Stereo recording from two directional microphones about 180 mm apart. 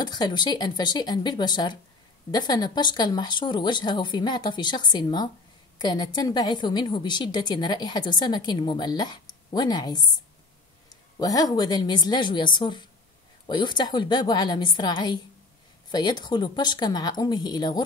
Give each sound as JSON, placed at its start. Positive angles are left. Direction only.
{"t": 0.0, "sound": "a woman's voice", "side_deg": 25}
{"t": 11.1, "sound": "a woman's voice", "side_deg": 20}